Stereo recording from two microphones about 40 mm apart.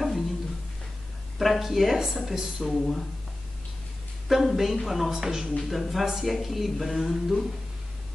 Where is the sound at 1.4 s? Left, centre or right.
Centre.